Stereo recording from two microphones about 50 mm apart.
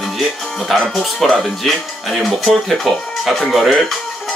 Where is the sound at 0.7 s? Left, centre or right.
Centre.